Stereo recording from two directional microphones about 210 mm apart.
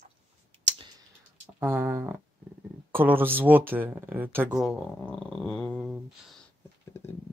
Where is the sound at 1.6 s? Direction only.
10° right (ahead or behind).